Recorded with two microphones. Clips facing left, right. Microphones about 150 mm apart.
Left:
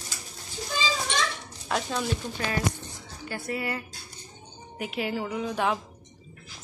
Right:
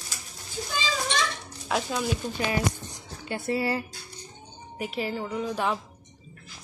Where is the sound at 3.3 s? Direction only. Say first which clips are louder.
Right 4 dB; 25° right (ahead or behind).